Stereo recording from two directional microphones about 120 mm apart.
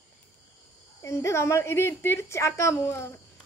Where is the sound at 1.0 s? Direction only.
25° left (ahead or behind).